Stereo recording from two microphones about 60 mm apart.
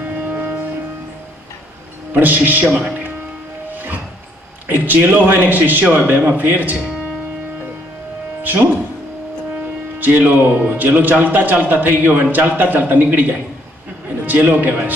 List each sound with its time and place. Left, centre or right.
0.0 s music: right
2.1 s a man's voice: right
2.6 s speech: centre
3.7 s music: right
4.6 s a man's voice: right
8.4 s music: right
9.9 s a man's voice: right
14.2 s a sound: right
14.6 s a man's voice: right